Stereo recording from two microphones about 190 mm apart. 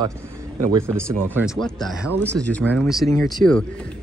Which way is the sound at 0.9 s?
5° left (ahead or behind).